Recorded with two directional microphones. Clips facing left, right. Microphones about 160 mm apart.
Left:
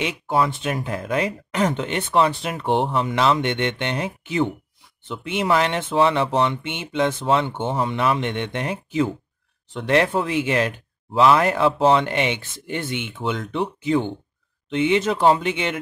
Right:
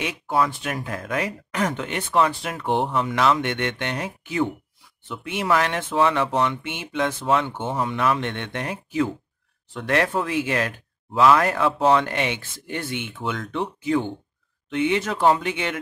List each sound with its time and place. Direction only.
0.0 s speech: 25° left (ahead or behind)